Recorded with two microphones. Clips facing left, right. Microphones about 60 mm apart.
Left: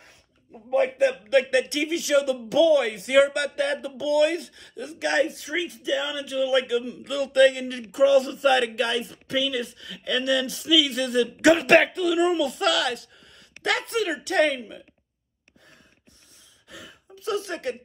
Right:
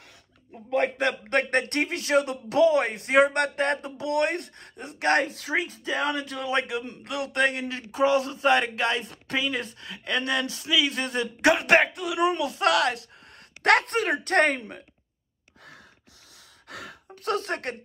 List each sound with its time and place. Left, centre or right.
0.7 s speech: right
11.5 s speech: centre; by 13.0 s right
13.6 s speech: right
16.6 s speech: right